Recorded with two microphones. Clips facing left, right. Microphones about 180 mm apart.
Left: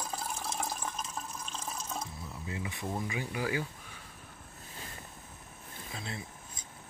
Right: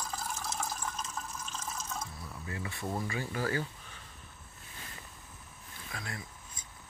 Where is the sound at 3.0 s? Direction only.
15° left (ahead or behind).